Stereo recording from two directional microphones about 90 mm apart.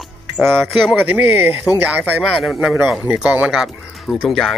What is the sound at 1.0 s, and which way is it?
Speech, 20° right (ahead or behind).